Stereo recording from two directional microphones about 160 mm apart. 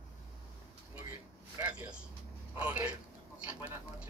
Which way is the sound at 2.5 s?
10° right (ahead or behind).